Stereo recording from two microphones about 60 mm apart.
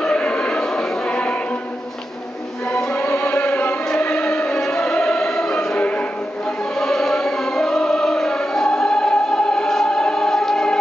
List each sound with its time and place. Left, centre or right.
0.0 s choir: centre
2.9 s music: left
4.5 s music: centre
5.0 s choir: left
5.8 s music: left
6.8 s music: centre